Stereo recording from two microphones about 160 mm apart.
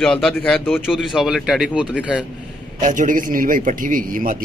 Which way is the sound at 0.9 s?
Centre (ahead or behind).